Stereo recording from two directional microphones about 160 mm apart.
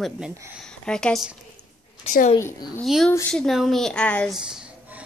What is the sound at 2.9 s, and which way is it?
A woman's voice, centre (ahead or behind).